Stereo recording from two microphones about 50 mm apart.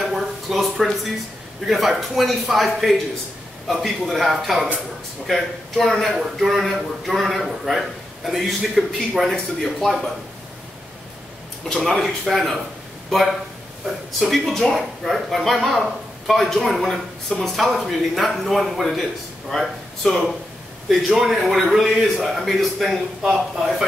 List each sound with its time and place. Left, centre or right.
0.0 s a sound: centre
1.7 s a man's voice: centre
12.0 s a man's voice: centre
14.2 s a man's voice: centre